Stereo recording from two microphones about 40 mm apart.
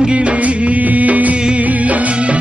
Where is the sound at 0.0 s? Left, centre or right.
Right.